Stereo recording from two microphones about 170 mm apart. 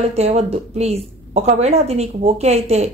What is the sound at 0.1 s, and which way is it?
Speech, 40° right (ahead or behind).